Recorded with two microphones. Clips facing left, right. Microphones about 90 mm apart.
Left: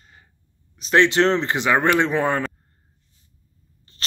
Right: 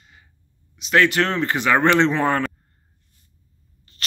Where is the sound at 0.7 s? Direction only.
30° left (ahead or behind); by 2.4 s 10° left (ahead or behind).